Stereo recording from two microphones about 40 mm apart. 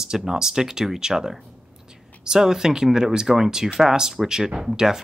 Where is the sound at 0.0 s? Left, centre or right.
Centre.